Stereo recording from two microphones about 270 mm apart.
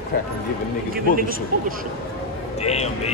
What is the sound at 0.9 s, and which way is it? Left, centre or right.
Speech, right.